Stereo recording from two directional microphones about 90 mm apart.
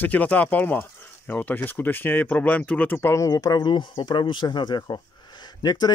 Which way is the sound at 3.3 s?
50° left (ahead or behind).